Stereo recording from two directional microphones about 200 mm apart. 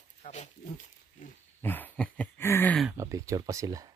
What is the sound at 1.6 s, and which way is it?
Speech, 10° left (ahead or behind).